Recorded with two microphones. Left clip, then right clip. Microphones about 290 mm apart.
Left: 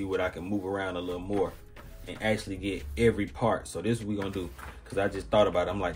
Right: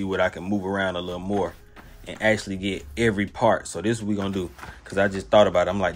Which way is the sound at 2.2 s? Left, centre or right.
Right.